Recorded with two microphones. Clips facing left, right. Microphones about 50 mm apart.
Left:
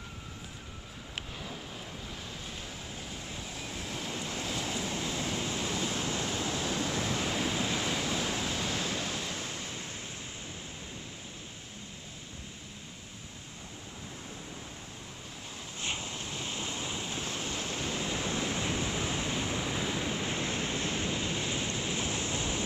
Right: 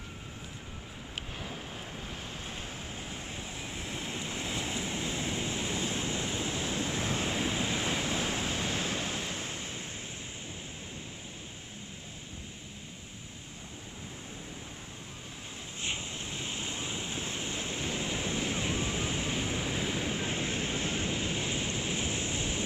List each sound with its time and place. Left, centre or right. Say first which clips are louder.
3.0 s waves: right 1 dB; right
15.8 s waves: even; centre